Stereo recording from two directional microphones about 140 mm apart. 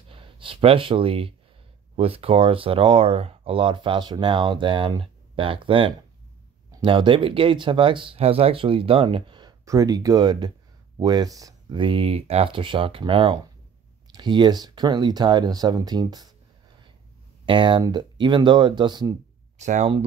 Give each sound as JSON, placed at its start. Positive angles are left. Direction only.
{"t": 0.1, "sound": "speech", "side_deg": -40}
{"t": 11.8, "sound": "speech", "side_deg": -40}
{"t": 17.5, "sound": "speech", "side_deg": -35}
{"t": 19.6, "sound": "speech", "side_deg": -60}